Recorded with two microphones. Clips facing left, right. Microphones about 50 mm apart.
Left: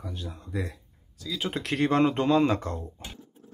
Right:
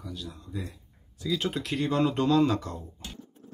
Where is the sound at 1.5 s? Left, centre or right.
Left.